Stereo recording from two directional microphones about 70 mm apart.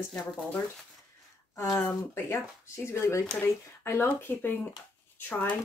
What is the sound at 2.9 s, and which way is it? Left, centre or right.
Speech, left.